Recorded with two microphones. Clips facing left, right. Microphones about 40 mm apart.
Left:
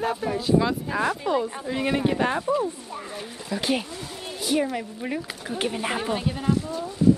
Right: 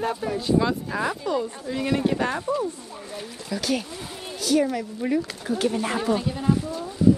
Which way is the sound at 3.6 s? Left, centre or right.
Left.